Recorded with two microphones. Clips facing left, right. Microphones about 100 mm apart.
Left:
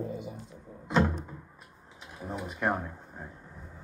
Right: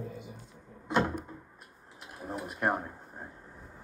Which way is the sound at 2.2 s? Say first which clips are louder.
Even; 5° right (ahead or behind).